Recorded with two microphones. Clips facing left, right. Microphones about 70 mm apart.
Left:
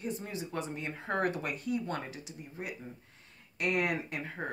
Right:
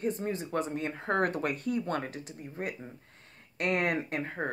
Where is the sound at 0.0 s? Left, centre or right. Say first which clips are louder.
Right 6 dB; right.